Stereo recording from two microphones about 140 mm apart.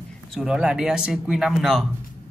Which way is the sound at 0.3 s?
5° right (ahead or behind).